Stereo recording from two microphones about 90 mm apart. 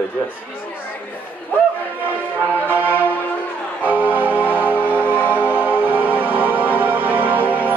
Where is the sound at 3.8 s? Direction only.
20° right (ahead or behind).